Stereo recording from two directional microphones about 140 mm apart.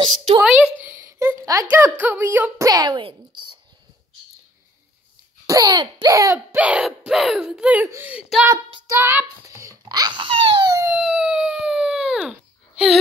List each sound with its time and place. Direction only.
0.4 s speech: 10° right (ahead or behind)
2.6 s speech: 25° right (ahead or behind)
3.0 s speech: 40° right (ahead or behind)
5.5 s speech: 30° right (ahead or behind)
6.3 s a child's voice: 10° right (ahead or behind); by 10.7 s 35° right (ahead or behind)
10.9 s dog: 10° right (ahead or behind)